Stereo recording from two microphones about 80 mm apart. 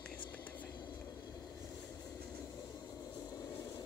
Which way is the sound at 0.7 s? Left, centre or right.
Left.